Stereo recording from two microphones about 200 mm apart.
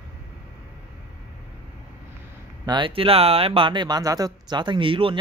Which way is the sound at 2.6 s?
25° right (ahead or behind).